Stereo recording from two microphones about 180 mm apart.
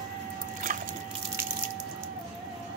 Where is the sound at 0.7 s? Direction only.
50° right (ahead or behind).